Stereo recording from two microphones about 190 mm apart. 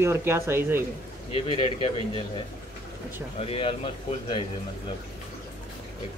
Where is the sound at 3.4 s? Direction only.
30° left (ahead or behind).